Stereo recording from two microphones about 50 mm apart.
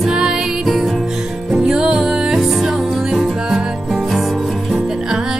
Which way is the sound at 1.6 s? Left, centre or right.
Centre.